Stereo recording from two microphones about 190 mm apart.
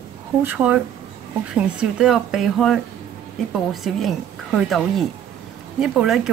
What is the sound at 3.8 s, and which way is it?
Speech, centre (ahead or behind).